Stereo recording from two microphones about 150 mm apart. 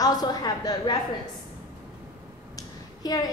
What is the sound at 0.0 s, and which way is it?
Speech, 25° left (ahead or behind).